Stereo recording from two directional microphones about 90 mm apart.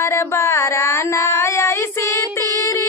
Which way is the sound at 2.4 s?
40° right (ahead or behind).